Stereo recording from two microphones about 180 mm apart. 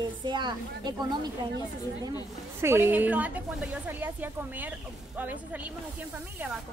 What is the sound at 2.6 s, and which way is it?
Speech, 15° right (ahead or behind).